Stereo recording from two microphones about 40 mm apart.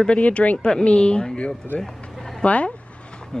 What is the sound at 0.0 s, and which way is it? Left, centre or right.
Speech, left.